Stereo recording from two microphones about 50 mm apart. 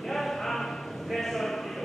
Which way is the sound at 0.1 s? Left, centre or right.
Centre.